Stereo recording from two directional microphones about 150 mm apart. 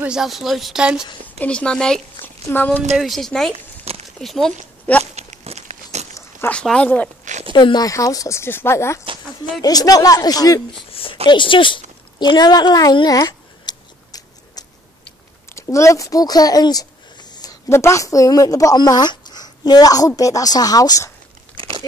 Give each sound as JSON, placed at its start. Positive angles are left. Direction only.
{"t": 0.0, "sound": "speech", "side_deg": -5}
{"t": 1.4, "sound": "speech", "side_deg": 5}
{"t": 3.5, "sound": "a sound", "side_deg": -40}
{"t": 4.2, "sound": "speech", "side_deg": 0}
{"t": 5.1, "sound": "crumpling", "side_deg": -45}
{"t": 6.5, "sound": "speech", "side_deg": 5}
{"t": 7.5, "sound": "speech", "side_deg": 30}
{"t": 10.9, "sound": "a sound", "side_deg": 40}
{"t": 11.2, "sound": "speech", "side_deg": 35}
{"t": 12.2, "sound": "scissors", "side_deg": 30}
{"t": 15.5, "sound": "speech", "side_deg": 20}
{"t": 21.5, "sound": "crunch", "side_deg": -35}